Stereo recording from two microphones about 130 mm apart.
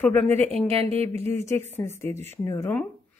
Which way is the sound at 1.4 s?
20° left (ahead or behind).